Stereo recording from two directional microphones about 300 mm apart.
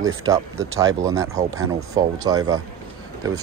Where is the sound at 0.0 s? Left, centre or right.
Right.